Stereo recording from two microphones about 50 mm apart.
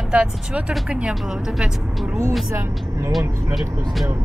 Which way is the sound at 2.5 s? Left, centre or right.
Right.